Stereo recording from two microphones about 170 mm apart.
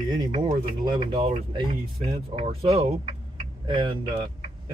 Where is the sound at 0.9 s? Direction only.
35° right (ahead or behind).